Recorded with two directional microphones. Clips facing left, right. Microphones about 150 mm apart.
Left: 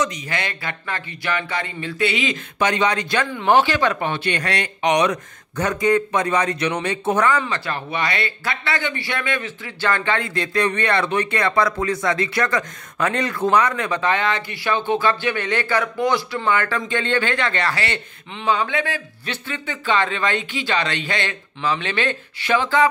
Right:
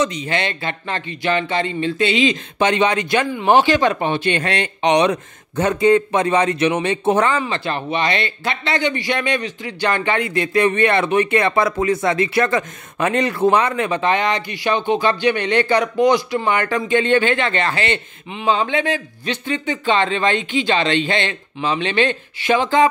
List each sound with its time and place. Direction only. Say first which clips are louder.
0.0 s a man's voice: right 4 dB; 25° right (ahead or behind)